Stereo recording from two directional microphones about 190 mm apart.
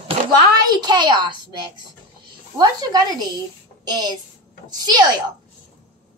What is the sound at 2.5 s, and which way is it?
A woman's voice, 20° right (ahead or behind).